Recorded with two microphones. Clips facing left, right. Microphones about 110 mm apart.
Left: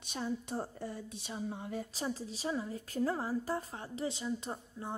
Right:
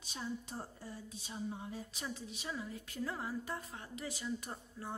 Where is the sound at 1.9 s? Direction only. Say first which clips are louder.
Left 6 dB; 35° left (ahead or behind).